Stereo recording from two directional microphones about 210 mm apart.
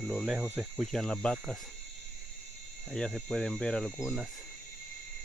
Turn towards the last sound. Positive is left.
turn(degrees=5)  # may be behind; listen again after turning